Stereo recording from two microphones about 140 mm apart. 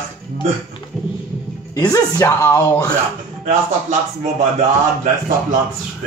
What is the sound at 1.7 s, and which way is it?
Speech, 25° left (ahead or behind).